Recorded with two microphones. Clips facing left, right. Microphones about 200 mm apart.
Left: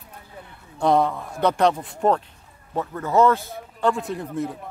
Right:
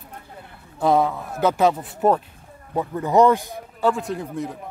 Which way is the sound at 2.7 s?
15° right (ahead or behind).